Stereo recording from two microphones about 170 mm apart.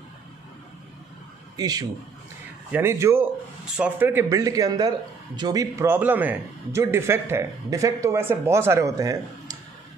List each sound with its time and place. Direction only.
1.6 s a man's voice: 20° right (ahead or behind)